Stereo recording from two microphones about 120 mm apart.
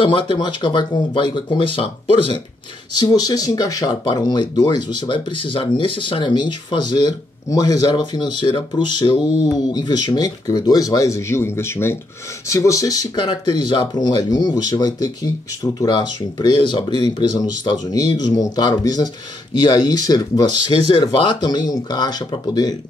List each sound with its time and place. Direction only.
0.0 s speech: 45° left (ahead or behind)
3.0 s speech: 35° left (ahead or behind)